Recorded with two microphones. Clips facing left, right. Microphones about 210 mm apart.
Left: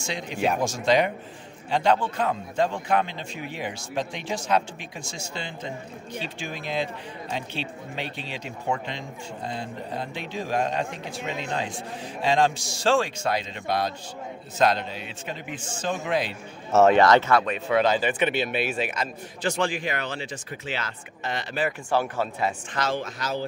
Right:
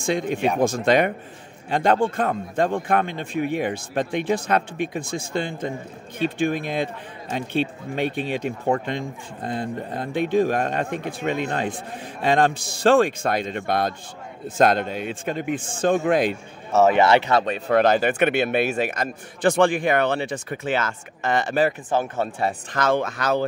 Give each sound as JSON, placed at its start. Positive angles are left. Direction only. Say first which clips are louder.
{"t": 0.0, "sound": "a man's voice", "louder": "right 5 dB", "side_deg": -50}
{"t": 16.9, "sound": "speech", "louder": "right 1 dB", "side_deg": -10}
{"t": 17.3, "sound": "speech", "louder": "right 2 dB", "side_deg": -30}
{"t": 17.6, "sound": "speech", "louder": "right 5 dB", "side_deg": -55}
{"t": 21.9, "sound": "speech", "louder": "right 2 dB", "side_deg": -25}
{"t": 22.8, "sound": "a man's voice", "louder": "right 8 dB", "side_deg": -55}